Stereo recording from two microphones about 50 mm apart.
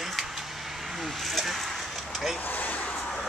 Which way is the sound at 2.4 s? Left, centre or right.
Left.